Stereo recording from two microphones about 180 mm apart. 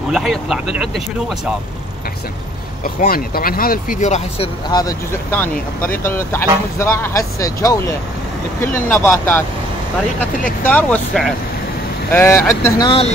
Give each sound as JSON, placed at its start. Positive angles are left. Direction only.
{"t": 0.1, "sound": "speech", "side_deg": 0}
{"t": 2.8, "sound": "speech", "side_deg": 55}
{"t": 4.0, "sound": "speech", "side_deg": 40}
{"t": 4.6, "sound": "speech", "side_deg": 20}
{"t": 10.7, "sound": "speech", "side_deg": 10}